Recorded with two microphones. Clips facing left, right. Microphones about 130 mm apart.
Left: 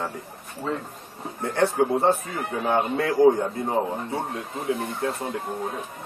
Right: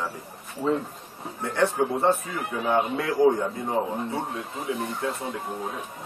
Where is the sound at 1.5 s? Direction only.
45° left (ahead or behind).